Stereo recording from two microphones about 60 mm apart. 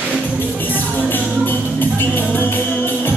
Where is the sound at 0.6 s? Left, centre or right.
Left.